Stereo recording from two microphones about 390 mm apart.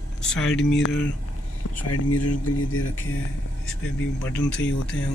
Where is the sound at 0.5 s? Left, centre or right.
Left.